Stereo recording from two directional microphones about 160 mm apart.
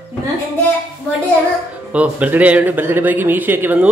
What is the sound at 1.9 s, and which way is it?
A man's voice, 10° right (ahead or behind).